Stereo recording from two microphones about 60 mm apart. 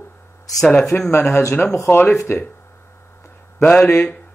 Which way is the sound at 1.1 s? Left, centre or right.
Left.